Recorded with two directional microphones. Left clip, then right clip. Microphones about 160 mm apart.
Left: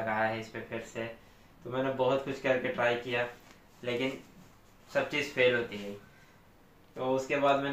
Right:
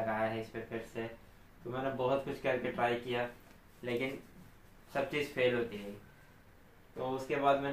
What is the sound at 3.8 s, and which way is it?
Speech, 20° left (ahead or behind).